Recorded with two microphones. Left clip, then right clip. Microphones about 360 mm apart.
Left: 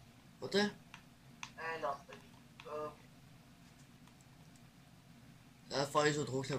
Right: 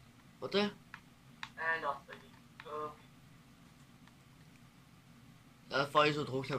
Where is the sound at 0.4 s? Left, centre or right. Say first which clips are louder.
Right 1 dB; left.